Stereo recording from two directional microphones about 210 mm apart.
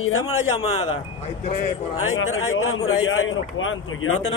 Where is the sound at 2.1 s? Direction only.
75° left (ahead or behind).